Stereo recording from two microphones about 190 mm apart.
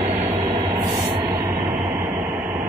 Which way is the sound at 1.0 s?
25° right (ahead or behind).